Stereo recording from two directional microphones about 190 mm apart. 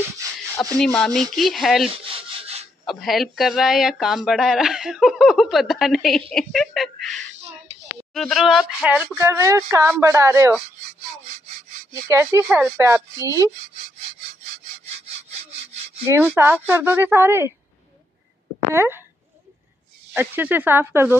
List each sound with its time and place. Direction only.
0.7 s speech: 5° left (ahead or behind)
2.1 s rub: 35° right (ahead or behind)
2.8 s speech: centre (ahead or behind)
12.1 s speech: 15° right (ahead or behind)
16.1 s speech: 15° right (ahead or behind)
18.7 s speech: 10° right (ahead or behind)
20.2 s speech: 10° right (ahead or behind)